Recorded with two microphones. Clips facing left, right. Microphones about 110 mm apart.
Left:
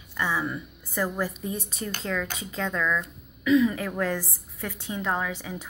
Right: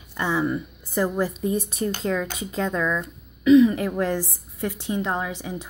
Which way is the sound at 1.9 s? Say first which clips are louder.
Right 3 dB; 20° right (ahead or behind).